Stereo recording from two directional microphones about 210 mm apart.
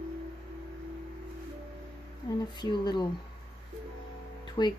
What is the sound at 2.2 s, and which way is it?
Speech, 20° left (ahead or behind).